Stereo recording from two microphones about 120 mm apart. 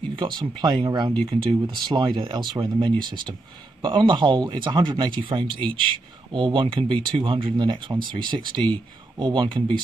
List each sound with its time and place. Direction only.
0.1 s speech: 40° right (ahead or behind)
5.5 s speech: 10° left (ahead or behind)
5.9 s speech: 45° right (ahead or behind)